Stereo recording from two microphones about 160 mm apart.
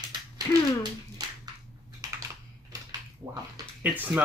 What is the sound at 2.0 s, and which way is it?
Typing, 20° right (ahead or behind).